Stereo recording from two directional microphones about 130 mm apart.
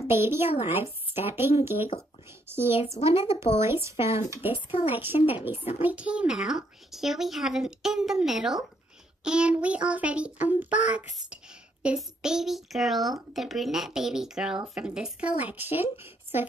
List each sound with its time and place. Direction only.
0.1 s a woman's voice: 20° right (ahead or behind)
0.7 s child singing: 15° right (ahead or behind)
2.5 s a woman's voice: 20° right (ahead or behind)
4.3 s child singing: 15° right (ahead or behind)
4.6 s a woman's voice: 45° left (ahead or behind)
4.9 s child singing: 15° right (ahead or behind)
5.8 s a woman's voice: 10° right (ahead or behind)
9.2 s child singing: 5° right (ahead or behind)
11.8 s a woman's voice: 5° right (ahead or behind)
14.8 s child singing: 5° right (ahead or behind)